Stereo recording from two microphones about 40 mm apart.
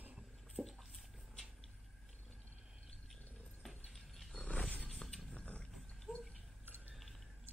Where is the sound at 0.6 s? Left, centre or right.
Centre.